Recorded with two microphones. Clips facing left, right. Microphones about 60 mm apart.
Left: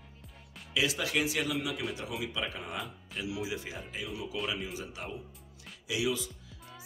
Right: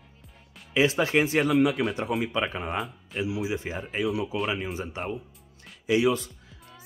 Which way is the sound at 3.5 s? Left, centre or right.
Right.